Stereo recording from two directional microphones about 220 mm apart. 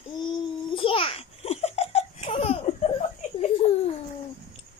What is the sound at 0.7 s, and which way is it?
Laughter, 25° left (ahead or behind).